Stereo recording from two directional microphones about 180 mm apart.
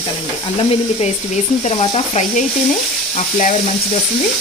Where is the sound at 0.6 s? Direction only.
35° left (ahead or behind).